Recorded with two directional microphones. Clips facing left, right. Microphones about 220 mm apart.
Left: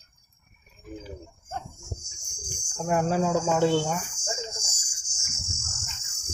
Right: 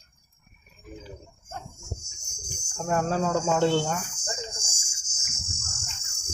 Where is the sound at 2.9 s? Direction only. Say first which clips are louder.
Left 1 dB; 10° left (ahead or behind).